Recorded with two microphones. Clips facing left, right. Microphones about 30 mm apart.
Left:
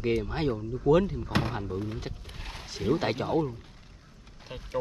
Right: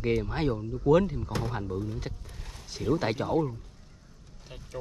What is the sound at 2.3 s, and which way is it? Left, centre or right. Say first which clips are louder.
Wild animals: left 5 dB; left.